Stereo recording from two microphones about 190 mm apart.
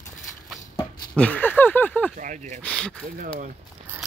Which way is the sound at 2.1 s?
40° right (ahead or behind).